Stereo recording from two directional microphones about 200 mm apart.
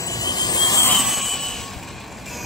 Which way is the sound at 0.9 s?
Centre (ahead or behind).